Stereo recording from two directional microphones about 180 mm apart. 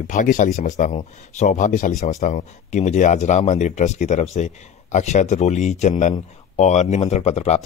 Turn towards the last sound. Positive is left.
turn(degrees=35)  # may be behind; listen again after turning